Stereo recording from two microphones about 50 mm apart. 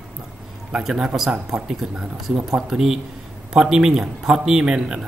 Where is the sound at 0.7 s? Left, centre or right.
Centre.